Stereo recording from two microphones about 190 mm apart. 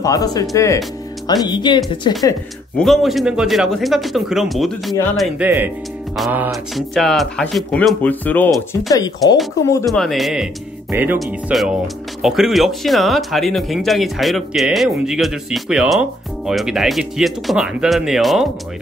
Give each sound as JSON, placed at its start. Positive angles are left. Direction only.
{"t": 0.0, "sound": "speech", "side_deg": 20}
{"t": 2.8, "sound": "speech", "side_deg": 0}